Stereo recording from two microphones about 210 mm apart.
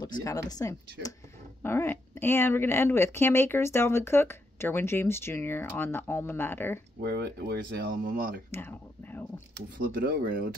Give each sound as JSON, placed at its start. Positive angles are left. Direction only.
{"t": 0.0, "sound": "speech", "side_deg": 15}
{"t": 7.0, "sound": "speech", "side_deg": -55}
{"t": 8.5, "sound": "a sound", "side_deg": 10}
{"t": 9.8, "sound": "speech", "side_deg": -45}